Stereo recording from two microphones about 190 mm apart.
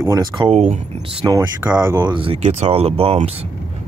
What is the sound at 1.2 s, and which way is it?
Speech, 20° right (ahead or behind).